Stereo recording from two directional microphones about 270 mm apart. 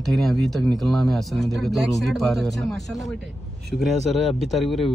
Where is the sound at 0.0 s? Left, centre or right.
Centre.